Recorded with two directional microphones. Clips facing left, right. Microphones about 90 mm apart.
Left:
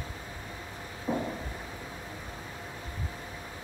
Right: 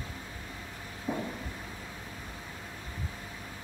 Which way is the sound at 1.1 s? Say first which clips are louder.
Left 3 dB; 15° left (ahead or behind).